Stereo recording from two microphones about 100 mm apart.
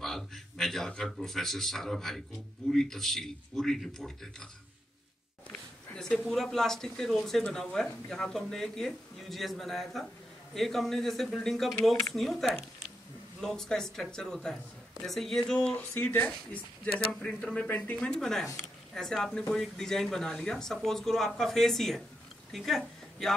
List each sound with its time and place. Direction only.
0.0 s speech: 5° left (ahead or behind)
5.9 s speech: 5° left (ahead or behind)
17.1 s speech: 5° left (ahead or behind)
17.6 s speech: 20° left (ahead or behind)
17.9 s speech: 5° left (ahead or behind)